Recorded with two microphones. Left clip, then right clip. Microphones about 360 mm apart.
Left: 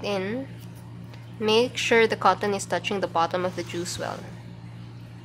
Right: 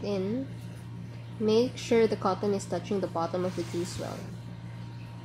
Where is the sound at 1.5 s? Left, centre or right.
Left.